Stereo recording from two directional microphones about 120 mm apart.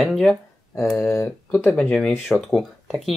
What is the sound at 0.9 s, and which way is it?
Speech, 20° left (ahead or behind).